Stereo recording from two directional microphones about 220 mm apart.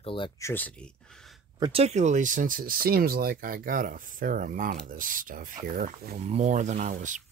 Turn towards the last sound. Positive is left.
turn(degrees=-35)  # may be behind; listen again after turning